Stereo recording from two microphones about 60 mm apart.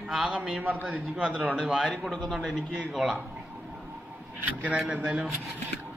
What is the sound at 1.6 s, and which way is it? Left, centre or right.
A man's voice, centre.